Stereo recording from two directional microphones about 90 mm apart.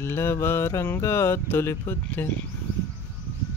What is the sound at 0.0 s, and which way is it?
Speech, 30° left (ahead or behind).